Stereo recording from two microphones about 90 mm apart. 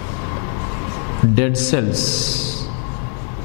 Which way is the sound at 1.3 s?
15° left (ahead or behind).